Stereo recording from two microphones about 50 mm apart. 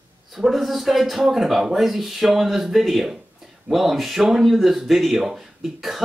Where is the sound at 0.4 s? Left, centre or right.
Centre.